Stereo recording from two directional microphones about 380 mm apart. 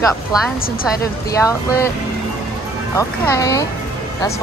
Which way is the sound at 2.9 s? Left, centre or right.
Centre.